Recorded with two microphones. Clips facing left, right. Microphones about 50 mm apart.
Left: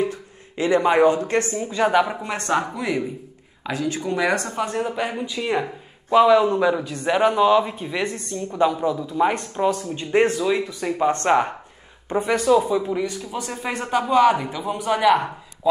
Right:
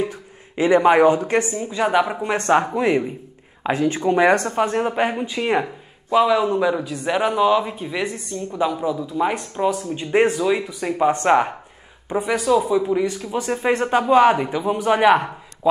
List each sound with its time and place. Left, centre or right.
0.0 s speech: right
1.8 s speech: centre
2.2 s a man's voice: right
6.1 s speech: centre
13.3 s a man's voice: right